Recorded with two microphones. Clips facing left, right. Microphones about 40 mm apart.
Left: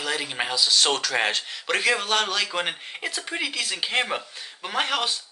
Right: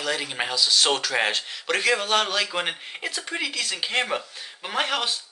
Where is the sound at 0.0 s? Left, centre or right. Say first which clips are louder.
Even; centre.